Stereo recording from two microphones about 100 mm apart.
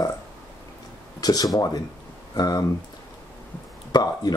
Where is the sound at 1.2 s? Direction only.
40° left (ahead or behind).